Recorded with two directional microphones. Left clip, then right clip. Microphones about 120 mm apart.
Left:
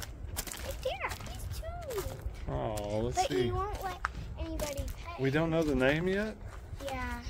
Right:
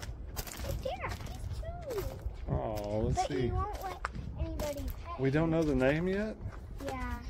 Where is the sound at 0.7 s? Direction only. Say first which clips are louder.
Even; 20° left (ahead or behind).